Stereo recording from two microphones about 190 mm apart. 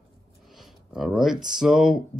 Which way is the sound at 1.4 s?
5° right (ahead or behind).